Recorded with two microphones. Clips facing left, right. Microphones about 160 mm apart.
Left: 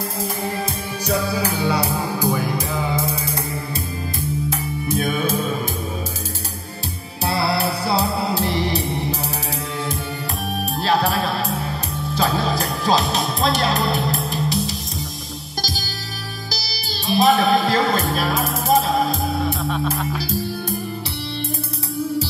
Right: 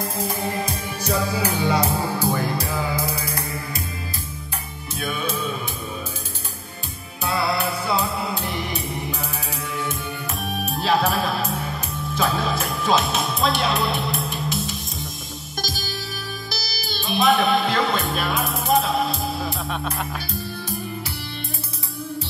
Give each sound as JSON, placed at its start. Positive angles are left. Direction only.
{"t": 1.4, "sound": "music", "side_deg": 10}
{"t": 5.0, "sound": "music", "side_deg": 45}
{"t": 7.2, "sound": "music", "side_deg": 35}
{"t": 10.6, "sound": "music", "side_deg": 0}